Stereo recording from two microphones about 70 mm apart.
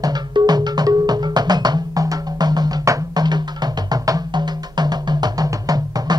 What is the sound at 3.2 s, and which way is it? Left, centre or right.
Music, right.